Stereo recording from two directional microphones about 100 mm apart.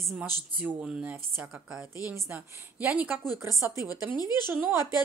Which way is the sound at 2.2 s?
15° right (ahead or behind).